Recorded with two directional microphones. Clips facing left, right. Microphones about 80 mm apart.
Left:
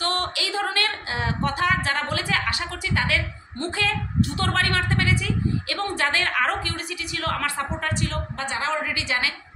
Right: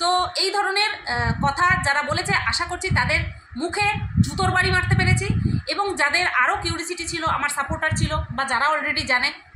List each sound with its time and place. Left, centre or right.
0.0 s a woman's voice: centre
8.1 s a woman's voice: right